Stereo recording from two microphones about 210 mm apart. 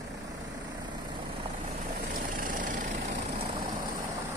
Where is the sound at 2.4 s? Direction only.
40° right (ahead or behind).